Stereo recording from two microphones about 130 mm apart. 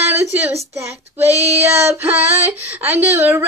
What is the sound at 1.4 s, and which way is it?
A woman's voice, 20° right (ahead or behind).